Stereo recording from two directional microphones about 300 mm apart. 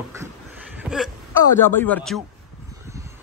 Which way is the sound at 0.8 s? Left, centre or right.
Centre.